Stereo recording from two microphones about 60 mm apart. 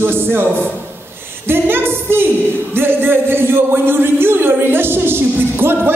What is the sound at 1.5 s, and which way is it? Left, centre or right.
Speech, right.